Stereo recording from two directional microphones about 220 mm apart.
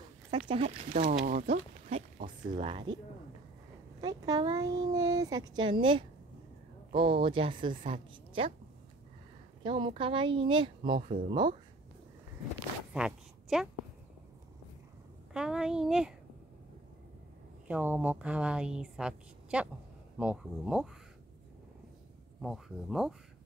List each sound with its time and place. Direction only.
0.5 s a woman's voice: 30° right (ahead or behind)
2.5 s a woman's voice: 25° right (ahead or behind)
4.0 s a woman's voice: 20° right (ahead or behind)
9.6 s a woman's voice: 20° right (ahead or behind)
12.9 s a sound: 5° right (ahead or behind)
15.3 s a woman's voice: 5° right (ahead or behind)
17.6 s a woman's voice: 10° right (ahead or behind)
22.4 s a woman's voice: centre (ahead or behind)